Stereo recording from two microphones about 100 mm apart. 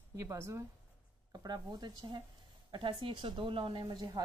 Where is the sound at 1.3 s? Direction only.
45° right (ahead or behind).